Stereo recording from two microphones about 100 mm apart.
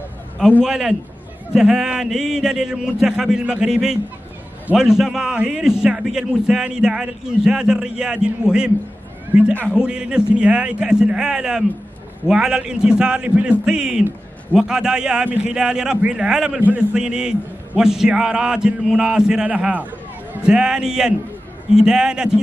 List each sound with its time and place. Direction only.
0.7 s a man's voice: 5° right (ahead or behind)
9.3 s a man's voice: 20° right (ahead or behind)